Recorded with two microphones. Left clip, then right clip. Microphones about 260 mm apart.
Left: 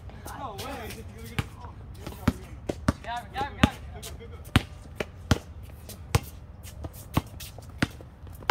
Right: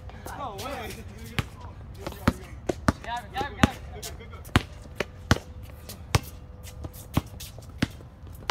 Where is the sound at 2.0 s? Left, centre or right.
Centre.